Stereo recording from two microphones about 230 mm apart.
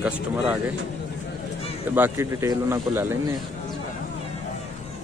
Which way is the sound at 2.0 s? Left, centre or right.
Centre.